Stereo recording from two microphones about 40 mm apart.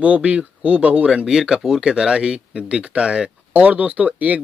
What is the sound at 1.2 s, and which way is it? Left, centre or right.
Speech, centre.